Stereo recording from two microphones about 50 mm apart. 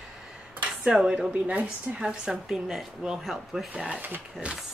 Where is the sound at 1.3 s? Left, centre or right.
Right.